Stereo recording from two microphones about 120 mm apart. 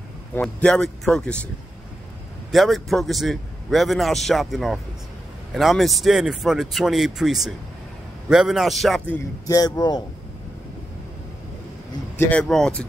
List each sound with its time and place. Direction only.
0.3 s speech: 10° left (ahead or behind)
2.5 s a man's voice: centre (ahead or behind)
9.5 s speech: 30° left (ahead or behind)
12.3 s speech: 5° left (ahead or behind)